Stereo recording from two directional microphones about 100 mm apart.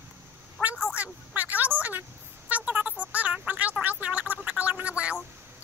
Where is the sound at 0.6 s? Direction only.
5° left (ahead or behind).